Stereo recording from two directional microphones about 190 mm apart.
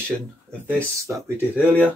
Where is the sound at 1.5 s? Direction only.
10° left (ahead or behind).